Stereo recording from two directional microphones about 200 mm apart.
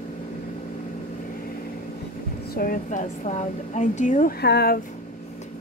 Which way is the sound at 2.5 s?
45° left (ahead or behind).